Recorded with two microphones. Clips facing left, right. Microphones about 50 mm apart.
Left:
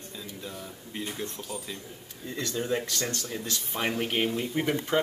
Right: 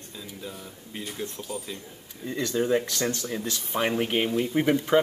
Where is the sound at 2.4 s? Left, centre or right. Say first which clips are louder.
Right 5 dB; centre.